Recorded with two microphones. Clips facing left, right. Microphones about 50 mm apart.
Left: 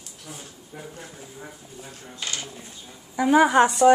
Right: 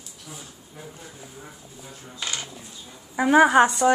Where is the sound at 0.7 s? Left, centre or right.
Left.